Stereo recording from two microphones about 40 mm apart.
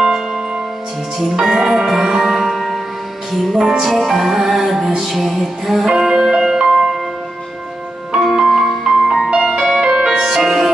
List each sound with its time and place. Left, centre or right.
0.0 s music: centre
5.9 s music: centre
8.2 s music: centre